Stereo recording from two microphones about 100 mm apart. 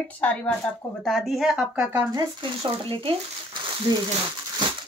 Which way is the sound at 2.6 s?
60° right (ahead or behind).